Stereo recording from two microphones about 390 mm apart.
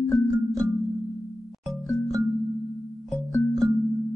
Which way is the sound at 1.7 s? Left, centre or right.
Centre.